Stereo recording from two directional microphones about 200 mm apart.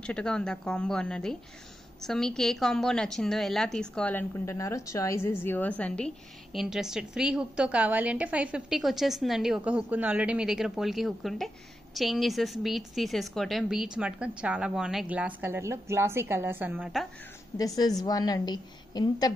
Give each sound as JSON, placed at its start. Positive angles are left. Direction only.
{"t": 0.0, "sound": "a woman's voice", "side_deg": 5}
{"t": 17.7, "sound": "a woman's voice", "side_deg": 20}